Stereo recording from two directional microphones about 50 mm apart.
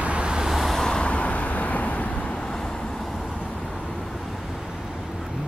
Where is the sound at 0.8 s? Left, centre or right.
Centre.